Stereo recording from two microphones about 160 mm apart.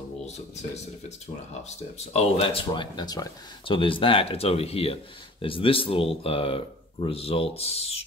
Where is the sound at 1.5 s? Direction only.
40° left (ahead or behind).